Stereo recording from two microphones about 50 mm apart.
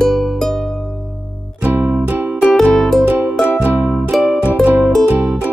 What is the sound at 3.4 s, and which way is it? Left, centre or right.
Music, right.